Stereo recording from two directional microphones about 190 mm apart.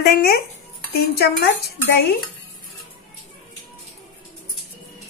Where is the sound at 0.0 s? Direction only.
55° left (ahead or behind).